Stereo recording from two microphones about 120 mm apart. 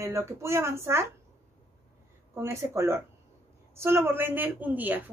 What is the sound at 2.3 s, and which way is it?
A woman's voice, 25° right (ahead or behind).